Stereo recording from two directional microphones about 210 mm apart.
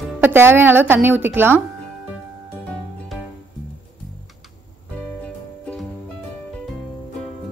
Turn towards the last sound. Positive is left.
turn(degrees=5)  # may be behind; listen again after turning